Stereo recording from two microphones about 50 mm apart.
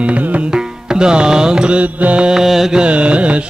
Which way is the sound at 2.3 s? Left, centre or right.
Centre.